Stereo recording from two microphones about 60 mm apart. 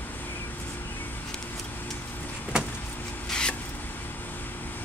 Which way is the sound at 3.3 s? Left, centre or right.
Centre.